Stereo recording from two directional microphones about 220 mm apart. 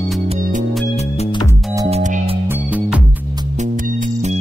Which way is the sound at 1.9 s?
30° right (ahead or behind).